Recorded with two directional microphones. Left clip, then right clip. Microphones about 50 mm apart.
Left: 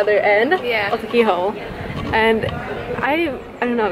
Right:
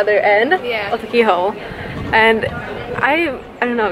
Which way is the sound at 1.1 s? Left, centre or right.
Centre.